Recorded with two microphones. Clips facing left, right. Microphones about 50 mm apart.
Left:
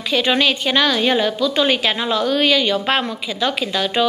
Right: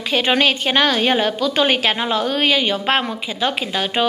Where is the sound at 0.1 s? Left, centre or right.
Right.